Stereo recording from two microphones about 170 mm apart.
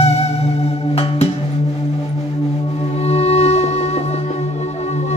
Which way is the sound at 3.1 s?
35° left (ahead or behind).